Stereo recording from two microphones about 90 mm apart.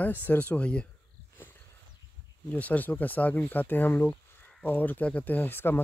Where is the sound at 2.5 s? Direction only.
15° left (ahead or behind).